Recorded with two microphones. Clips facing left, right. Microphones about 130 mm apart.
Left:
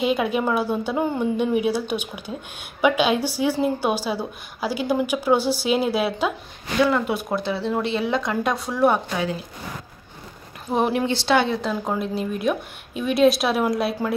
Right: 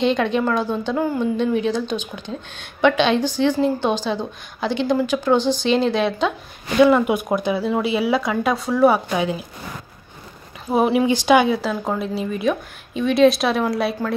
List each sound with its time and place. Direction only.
0.0 s a woman's voice: 10° left (ahead or behind)
1.0 s a woman's voice: 25° left (ahead or behind)
1.3 s a woman's voice: 10° left (ahead or behind)
6.8 s speech: 15° right (ahead or behind); by 9.0 s centre (ahead or behind)
9.1 s speech: 15° right (ahead or behind)
10.7 s speech: 5° right (ahead or behind)
11.7 s speech: centre (ahead or behind)